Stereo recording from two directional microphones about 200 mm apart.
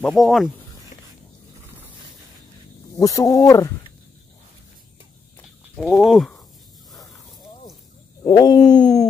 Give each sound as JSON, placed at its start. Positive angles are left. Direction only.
{"t": 0.0, "sound": "speech", "side_deg": 0}
{"t": 3.0, "sound": "speech", "side_deg": 15}
{"t": 5.8, "sound": "speech", "side_deg": 0}
{"t": 8.2, "sound": "speech", "side_deg": 15}